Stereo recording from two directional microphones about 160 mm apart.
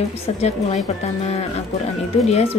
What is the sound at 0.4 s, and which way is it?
A woman's voice, 40° left (ahead or behind).